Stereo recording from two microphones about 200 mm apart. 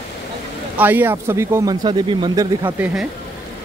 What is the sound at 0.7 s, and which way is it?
A man's voice, 10° right (ahead or behind).